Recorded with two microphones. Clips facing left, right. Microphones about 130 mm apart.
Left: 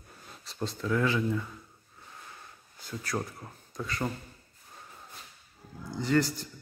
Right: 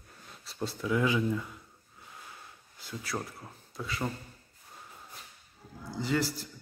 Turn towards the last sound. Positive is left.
turn(degrees=-5)  # may be behind; listen again after turning